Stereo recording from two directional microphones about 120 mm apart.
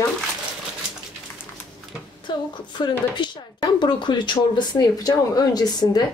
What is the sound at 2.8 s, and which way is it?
Speech, 35° left (ahead or behind).